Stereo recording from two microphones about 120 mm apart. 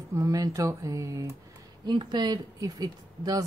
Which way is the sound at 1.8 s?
40° right (ahead or behind).